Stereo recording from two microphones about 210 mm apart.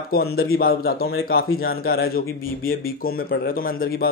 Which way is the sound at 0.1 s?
45° left (ahead or behind).